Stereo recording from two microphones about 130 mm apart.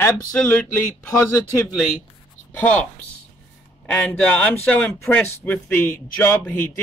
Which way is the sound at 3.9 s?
10° left (ahead or behind).